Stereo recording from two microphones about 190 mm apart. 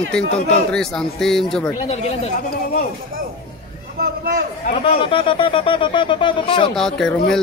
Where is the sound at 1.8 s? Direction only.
35° left (ahead or behind).